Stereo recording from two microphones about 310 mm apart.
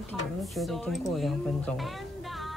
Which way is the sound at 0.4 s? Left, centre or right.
Centre.